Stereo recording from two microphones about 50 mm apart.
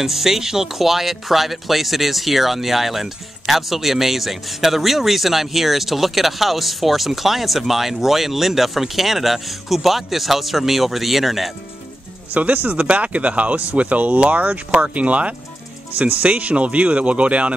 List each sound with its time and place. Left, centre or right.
0.0 s speech: centre
12.3 s speech: right